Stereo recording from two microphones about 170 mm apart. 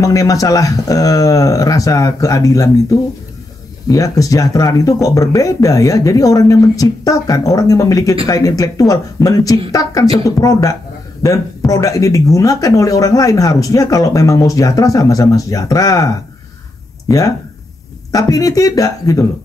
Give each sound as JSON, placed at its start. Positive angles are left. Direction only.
{"t": 0.0, "sound": "speech", "side_deg": 20}
{"t": 18.1, "sound": "speech", "side_deg": 20}